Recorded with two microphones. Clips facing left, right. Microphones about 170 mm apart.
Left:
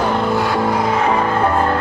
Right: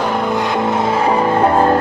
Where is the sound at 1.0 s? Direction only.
25° right (ahead or behind).